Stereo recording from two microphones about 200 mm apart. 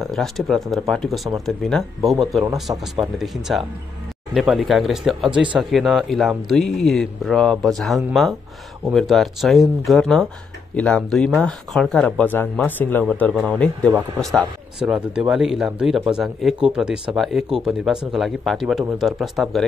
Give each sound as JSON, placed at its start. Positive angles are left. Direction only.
{"t": 0.0, "sound": "speech", "side_deg": 0}
{"t": 2.7, "sound": "speech", "side_deg": -10}